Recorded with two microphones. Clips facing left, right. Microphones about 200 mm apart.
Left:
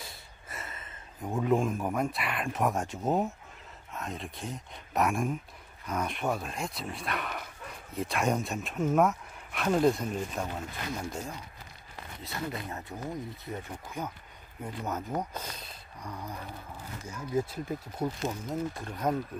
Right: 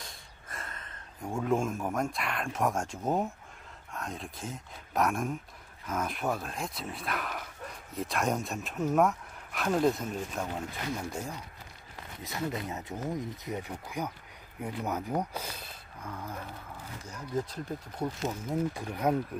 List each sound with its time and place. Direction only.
0.0 s speech: 5° left (ahead or behind)
12.2 s speech: 20° right (ahead or behind); by 16.3 s centre (ahead or behind)
17.3 s speech: 10° left (ahead or behind)
18.5 s speech: 10° right (ahead or behind)